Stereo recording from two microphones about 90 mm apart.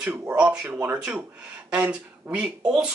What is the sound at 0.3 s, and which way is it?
Speech, 10° right (ahead or behind).